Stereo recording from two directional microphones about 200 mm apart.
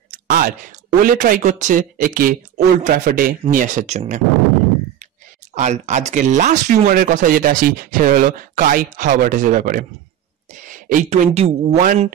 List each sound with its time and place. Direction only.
0.1 s speech: 45° right (ahead or behind)
5.5 s speech: 35° right (ahead or behind)